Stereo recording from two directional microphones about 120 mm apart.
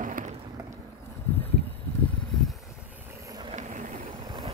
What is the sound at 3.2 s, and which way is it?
Vehicle, 35° right (ahead or behind).